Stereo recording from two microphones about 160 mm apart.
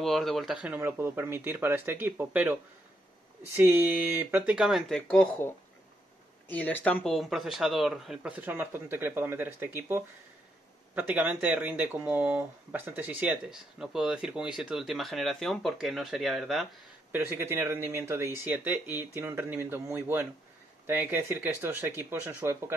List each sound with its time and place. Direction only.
0.0 s speech: centre (ahead or behind)
3.5 s speech: 15° right (ahead or behind); by 5.5 s 10° left (ahead or behind)
6.5 s speech: 10° left (ahead or behind)
17.1 s speech: 15° right (ahead or behind)